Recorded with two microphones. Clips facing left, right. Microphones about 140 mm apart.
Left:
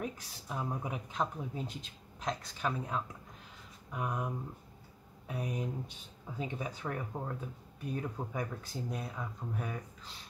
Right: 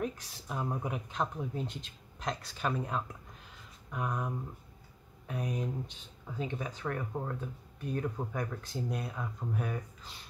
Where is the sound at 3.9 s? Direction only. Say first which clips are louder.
Right 1 dB; 10° left (ahead or behind).